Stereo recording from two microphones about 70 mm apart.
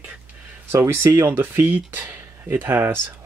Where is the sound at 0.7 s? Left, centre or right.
Right.